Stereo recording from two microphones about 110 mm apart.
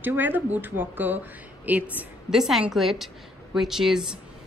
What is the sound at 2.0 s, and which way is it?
A woman's voice, 5° right (ahead or behind).